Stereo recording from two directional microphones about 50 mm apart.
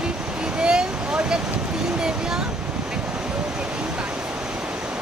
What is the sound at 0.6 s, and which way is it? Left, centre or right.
Speech, centre.